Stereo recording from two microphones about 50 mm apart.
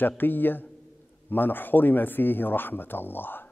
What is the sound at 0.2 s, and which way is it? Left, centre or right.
A man's voice, left.